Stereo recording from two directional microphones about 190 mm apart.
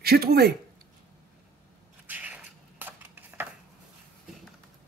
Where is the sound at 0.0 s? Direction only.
55° right (ahead or behind).